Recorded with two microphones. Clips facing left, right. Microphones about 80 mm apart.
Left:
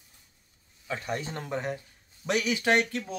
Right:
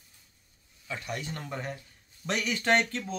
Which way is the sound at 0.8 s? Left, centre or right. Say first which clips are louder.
Left 3 dB; left.